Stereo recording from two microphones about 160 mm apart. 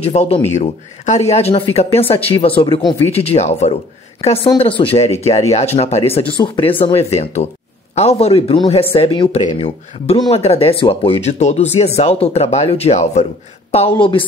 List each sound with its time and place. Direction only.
0.0 s speech: 40° left (ahead or behind)